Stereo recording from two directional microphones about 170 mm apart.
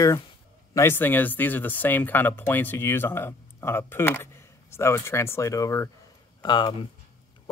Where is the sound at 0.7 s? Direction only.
15° left (ahead or behind).